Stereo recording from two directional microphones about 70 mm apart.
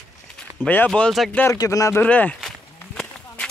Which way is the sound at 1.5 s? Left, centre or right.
Left.